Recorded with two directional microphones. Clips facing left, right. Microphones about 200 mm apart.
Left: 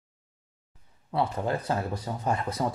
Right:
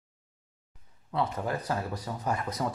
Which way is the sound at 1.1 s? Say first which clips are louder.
Left 3 dB; 30° left (ahead or behind).